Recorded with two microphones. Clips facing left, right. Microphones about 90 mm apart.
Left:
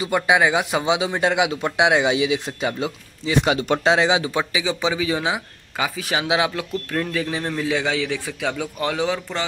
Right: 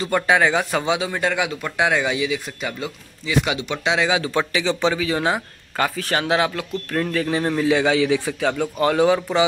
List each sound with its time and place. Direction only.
0.0 s speech: 15° left (ahead or behind); by 3.6 s 30° left (ahead or behind)
3.6 s speech: 45° left (ahead or behind)
3.9 s speech: 25° left (ahead or behind)
4.3 s speech: 10° left (ahead or behind)
6.9 s a man's voice: 5° left (ahead or behind)